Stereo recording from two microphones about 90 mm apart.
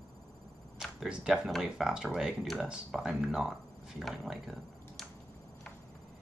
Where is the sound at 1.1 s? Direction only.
10° right (ahead or behind).